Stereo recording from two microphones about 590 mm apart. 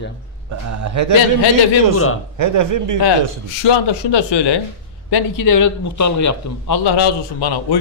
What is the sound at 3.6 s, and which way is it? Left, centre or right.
A man's voice, left.